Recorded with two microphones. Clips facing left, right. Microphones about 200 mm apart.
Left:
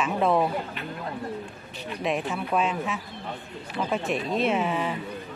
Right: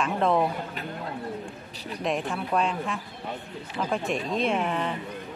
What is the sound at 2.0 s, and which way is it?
Speech, 5° left (ahead or behind).